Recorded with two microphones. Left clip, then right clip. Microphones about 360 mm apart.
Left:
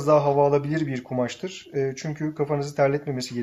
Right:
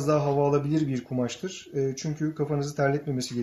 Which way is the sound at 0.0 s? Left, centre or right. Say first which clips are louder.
Left 5 dB; centre.